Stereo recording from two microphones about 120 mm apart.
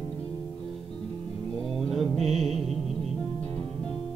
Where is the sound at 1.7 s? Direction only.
Centre (ahead or behind).